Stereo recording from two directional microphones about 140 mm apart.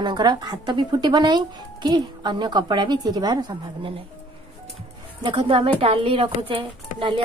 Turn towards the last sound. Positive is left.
turn(degrees=-40)  # may be behind; listen again after turning